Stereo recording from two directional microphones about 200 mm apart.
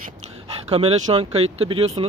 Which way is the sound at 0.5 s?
30° right (ahead or behind).